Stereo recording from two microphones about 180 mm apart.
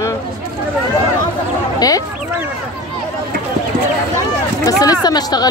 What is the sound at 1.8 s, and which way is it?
Speech, 20° left (ahead or behind).